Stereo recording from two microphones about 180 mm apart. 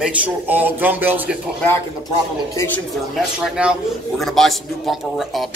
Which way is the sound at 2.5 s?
15° left (ahead or behind).